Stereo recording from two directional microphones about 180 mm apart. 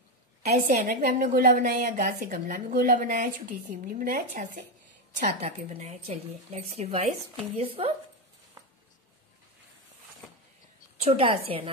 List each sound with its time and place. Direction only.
0.6 s a woman's voice: 45° right (ahead or behind)
11.1 s a woman's voice: 30° right (ahead or behind)